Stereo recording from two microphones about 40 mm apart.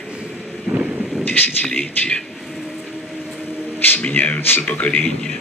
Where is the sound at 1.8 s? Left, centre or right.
Left.